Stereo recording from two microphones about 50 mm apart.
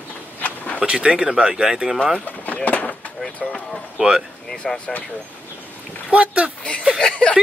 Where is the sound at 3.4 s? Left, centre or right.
Centre.